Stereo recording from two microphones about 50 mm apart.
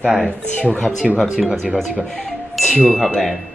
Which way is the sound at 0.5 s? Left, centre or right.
Left.